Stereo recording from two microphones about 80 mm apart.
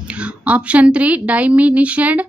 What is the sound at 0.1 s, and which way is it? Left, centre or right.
A woman's voice, centre.